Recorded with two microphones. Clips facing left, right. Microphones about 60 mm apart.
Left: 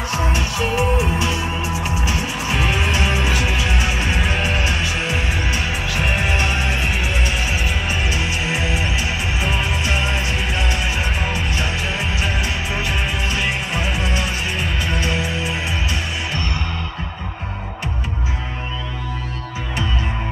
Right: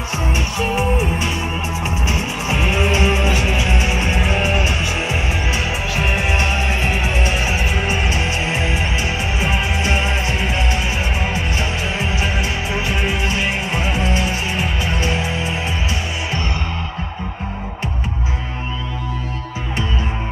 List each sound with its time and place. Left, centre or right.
1.8 s music: right
7.0 s music: right
12.2 s music: right